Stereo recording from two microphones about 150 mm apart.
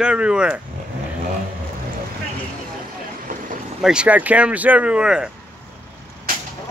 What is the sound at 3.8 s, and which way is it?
Speech, 5° right (ahead or behind).